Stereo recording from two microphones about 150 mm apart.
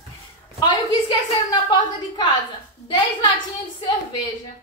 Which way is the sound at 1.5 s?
30° left (ahead or behind).